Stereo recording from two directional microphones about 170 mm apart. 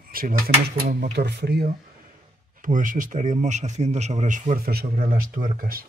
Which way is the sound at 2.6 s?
50° right (ahead or behind).